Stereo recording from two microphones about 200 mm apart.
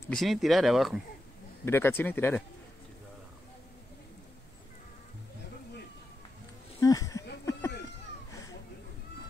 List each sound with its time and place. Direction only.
0.1 s speech: centre (ahead or behind)
1.7 s speech: 10° left (ahead or behind)
6.8 s a sound: 15° left (ahead or behind)